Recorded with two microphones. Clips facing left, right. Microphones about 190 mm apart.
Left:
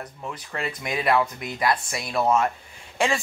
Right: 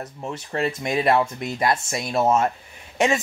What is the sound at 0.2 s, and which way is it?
Speech, 25° right (ahead or behind).